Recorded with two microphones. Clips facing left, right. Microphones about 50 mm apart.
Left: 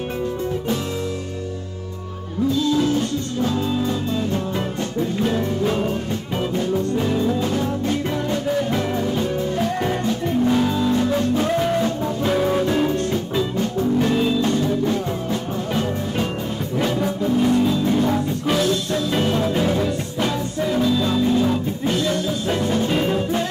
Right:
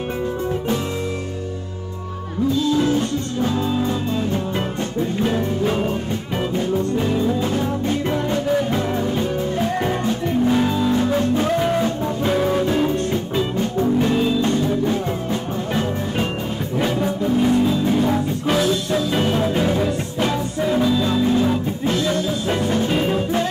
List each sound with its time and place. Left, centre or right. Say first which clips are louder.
2.8 s music: right 1 dB; centre